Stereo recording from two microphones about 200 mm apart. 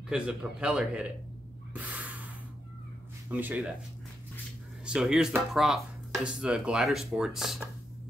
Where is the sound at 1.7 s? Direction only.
10° right (ahead or behind).